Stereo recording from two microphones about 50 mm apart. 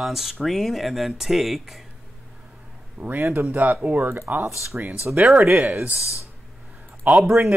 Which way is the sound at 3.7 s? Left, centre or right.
Right.